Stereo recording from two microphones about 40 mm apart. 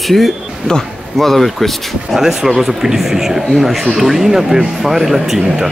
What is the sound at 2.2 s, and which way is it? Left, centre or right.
Speech, centre.